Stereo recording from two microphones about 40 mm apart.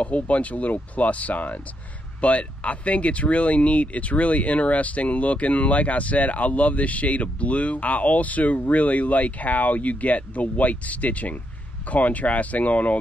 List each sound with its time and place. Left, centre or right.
0.0 s speech: left